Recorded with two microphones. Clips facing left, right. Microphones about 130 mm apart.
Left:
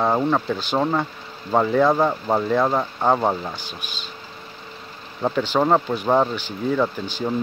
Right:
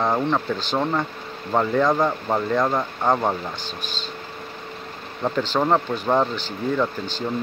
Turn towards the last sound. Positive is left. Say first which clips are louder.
# left 1 dB
turn(degrees=10)  # may be behind; listen again after turning